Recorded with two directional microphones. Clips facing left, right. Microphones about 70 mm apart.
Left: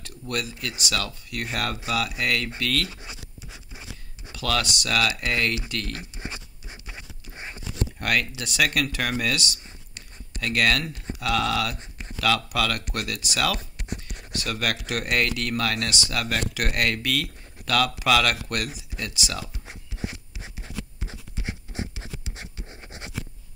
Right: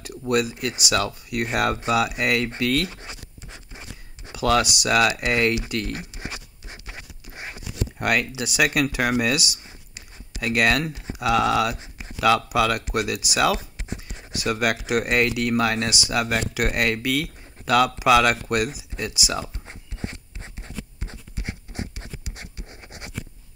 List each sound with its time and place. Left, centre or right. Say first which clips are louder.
0.3 s speech: right 8 dB; centre
4.3 s speech: right 6 dB; centre
7.3 s a sound: right 2 dB; right
8.0 s speech: right 3 dB; centre
21.0 s a sound: even; right
21.7 s writing: even; left